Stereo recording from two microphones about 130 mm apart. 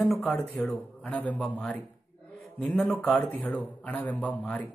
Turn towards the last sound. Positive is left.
turn(degrees=10)  # may be behind; listen again after turning